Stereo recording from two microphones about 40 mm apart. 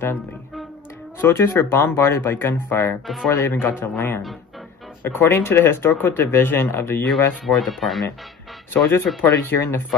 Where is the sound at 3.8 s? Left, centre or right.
Left.